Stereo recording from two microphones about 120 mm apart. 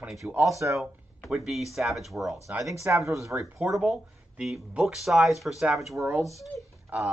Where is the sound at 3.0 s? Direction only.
25° right (ahead or behind).